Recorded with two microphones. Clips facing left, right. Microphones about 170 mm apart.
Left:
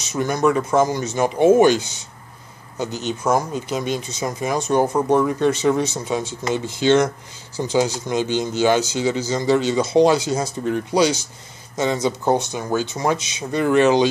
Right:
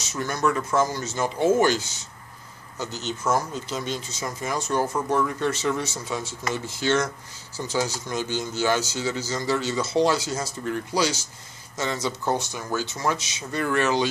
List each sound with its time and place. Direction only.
0.0 s speech: 20° left (ahead or behind)